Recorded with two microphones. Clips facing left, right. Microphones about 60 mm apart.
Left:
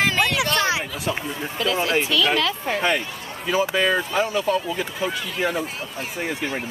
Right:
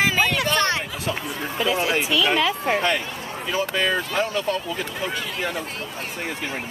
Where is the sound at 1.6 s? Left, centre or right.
Centre.